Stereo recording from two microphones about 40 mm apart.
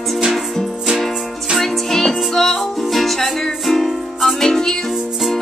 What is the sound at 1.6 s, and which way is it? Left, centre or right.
Music, centre.